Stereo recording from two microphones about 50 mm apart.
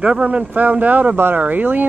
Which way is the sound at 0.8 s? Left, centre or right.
Right.